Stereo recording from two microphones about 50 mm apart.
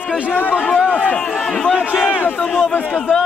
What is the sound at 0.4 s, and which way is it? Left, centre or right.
Speech, left.